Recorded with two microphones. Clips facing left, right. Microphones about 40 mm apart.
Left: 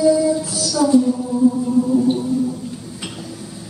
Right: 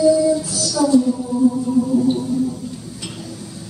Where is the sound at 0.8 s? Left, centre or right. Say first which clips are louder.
Left 1 dB; left.